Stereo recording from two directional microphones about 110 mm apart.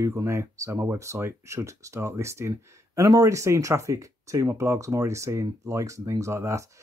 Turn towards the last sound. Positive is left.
turn(degrees=-25)  # may be behind; listen again after turning